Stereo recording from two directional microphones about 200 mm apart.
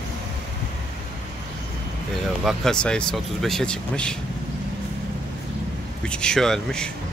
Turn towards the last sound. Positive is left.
turn(degrees=5)  # may be behind; listen again after turning